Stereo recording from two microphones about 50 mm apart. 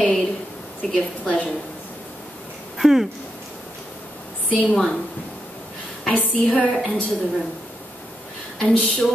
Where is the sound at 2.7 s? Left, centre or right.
Centre.